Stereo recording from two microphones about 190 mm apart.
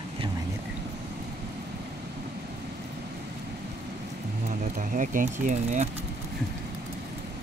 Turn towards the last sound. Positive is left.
turn(degrees=-40)  # may be behind; listen again after turning